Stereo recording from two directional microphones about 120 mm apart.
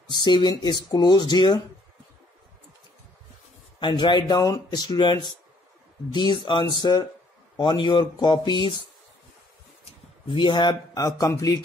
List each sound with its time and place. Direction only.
0.1 s speech: 35° left (ahead or behind)
3.8 s speech: 40° left (ahead or behind)
10.2 s speech: 45° left (ahead or behind)
11.0 s a man's voice: 30° left (ahead or behind)